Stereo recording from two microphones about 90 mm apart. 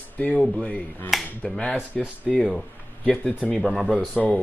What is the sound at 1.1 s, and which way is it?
Speech, centre (ahead or behind).